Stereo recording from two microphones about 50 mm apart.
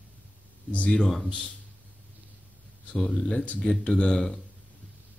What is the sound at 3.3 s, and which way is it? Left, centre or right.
Speech, left.